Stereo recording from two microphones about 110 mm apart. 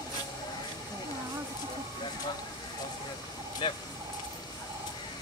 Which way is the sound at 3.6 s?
50° left (ahead or behind).